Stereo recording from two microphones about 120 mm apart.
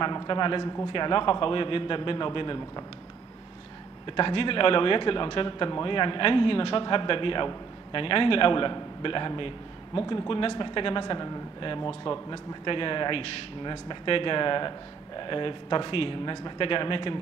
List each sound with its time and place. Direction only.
0.0 s speech: 40° left (ahead or behind)
4.2 s speech: 45° left (ahead or behind)
11.6 s speech: 45° left (ahead or behind)